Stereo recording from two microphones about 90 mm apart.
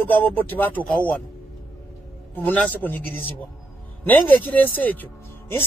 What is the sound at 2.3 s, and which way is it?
Speech, 15° left (ahead or behind).